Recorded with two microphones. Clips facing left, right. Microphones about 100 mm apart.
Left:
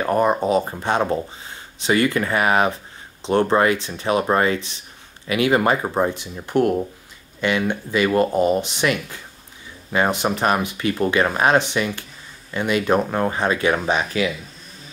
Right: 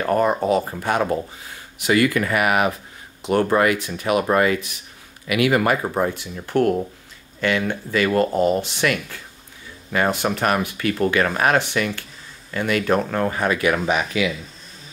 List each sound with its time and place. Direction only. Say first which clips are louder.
0.0 s speech: left 1 dB; 20° left (ahead or behind)